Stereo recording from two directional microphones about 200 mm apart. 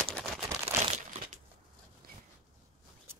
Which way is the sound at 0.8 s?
35° right (ahead or behind).